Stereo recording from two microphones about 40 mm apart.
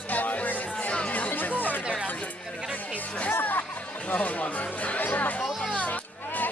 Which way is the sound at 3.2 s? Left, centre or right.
Left.